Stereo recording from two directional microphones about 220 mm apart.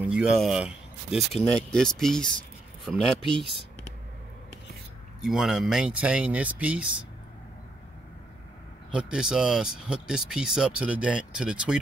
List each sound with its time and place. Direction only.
0.1 s speech: centre (ahead or behind)
5.2 s speech: centre (ahead or behind)
8.9 s speech: 5° right (ahead or behind)